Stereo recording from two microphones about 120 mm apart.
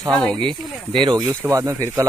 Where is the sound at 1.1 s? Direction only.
30° right (ahead or behind).